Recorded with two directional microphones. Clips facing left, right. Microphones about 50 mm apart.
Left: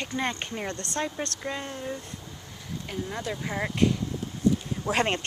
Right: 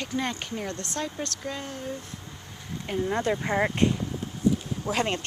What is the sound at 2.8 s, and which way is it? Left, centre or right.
Speech, right.